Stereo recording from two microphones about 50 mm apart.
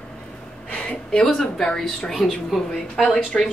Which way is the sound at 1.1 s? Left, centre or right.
Centre.